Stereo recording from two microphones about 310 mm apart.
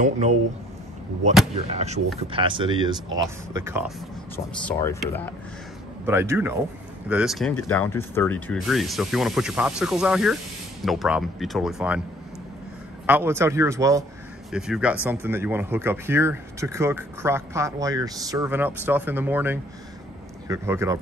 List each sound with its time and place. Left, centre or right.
0.0 s speech: right
1.5 s speech: right
4.6 s speech: centre
6.0 s speech: centre
13.0 s speech: centre